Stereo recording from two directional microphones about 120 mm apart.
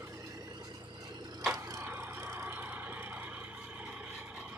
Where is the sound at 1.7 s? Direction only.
20° right (ahead or behind).